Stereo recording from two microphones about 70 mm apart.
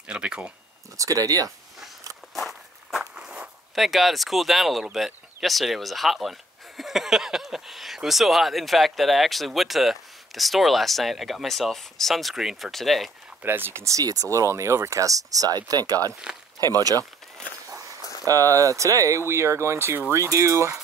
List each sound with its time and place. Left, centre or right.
0.0 s speech: centre
0.9 s speech: right
2.3 s walk: centre
3.0 s zipper: centre
4.9 s speech: centre
13.4 s speech: right
13.8 s speech: right
18.2 s speech: right